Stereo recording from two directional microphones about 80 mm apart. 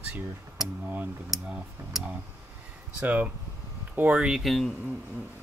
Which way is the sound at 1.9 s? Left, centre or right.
Centre.